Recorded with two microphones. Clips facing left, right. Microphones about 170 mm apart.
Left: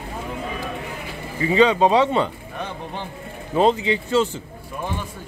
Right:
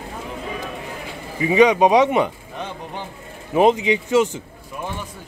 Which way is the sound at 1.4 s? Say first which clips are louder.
Right 2 dB; 15° right (ahead or behind).